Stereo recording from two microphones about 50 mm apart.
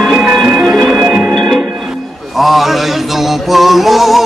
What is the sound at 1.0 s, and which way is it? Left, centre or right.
Music, centre.